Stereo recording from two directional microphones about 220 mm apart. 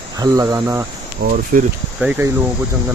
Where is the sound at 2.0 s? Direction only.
5° right (ahead or behind).